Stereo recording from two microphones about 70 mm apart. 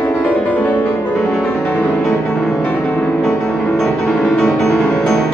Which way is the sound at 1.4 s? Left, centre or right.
Left.